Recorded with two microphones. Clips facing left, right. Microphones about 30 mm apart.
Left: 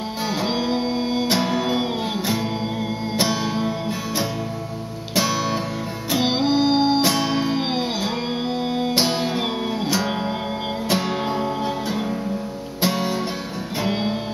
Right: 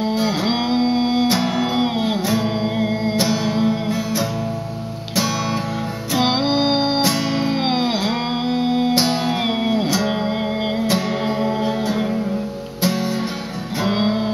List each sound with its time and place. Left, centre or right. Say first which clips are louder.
0.2 s music: right 3 dB; centre
1.4 s music: right 2 dB; centre
3.2 s music: even; centre
5.1 s music: even; centre
6.1 s music: right 2 dB; centre
7.0 s music: right 1 dB; centre
7.2 s music: right 2 dB; centre
8.9 s music: right 2 dB; centre
9.4 s music: right 5 dB; centre
10.9 s music: left 2 dB; centre
11.2 s music: right 3 dB; centre
12.8 s music: right 1 dB; centre
13.8 s music: right 5 dB; right